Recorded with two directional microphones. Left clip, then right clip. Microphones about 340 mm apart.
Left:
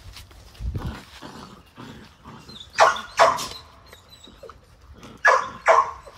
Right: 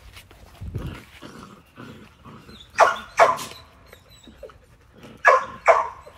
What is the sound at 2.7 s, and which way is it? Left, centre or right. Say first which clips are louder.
Dog: even; right.